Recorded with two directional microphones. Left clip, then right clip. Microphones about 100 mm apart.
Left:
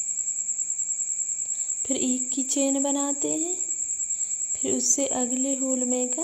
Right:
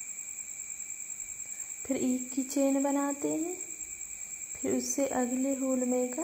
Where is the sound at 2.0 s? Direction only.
5° left (ahead or behind).